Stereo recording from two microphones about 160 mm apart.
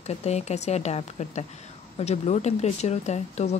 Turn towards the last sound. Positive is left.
turn(degrees=45)  # may be behind; listen again after turning